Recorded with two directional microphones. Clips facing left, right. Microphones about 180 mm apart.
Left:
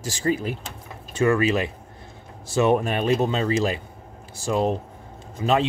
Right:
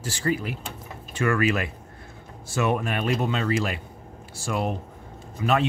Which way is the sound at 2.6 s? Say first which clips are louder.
Left 5 dB; 30° left (ahead or behind).